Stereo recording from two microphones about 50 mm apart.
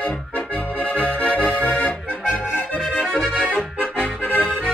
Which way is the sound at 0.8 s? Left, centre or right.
Left.